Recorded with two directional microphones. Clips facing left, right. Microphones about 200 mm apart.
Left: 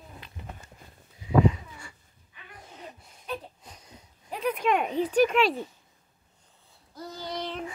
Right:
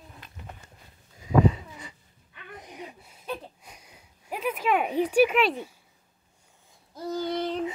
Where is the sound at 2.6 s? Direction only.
15° right (ahead or behind).